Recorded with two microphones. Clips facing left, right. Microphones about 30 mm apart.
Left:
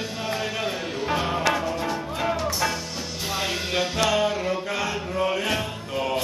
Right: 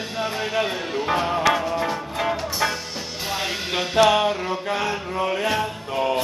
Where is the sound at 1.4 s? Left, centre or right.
Centre.